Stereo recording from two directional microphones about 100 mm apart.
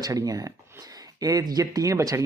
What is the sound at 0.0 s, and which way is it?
Speech, 40° right (ahead or behind).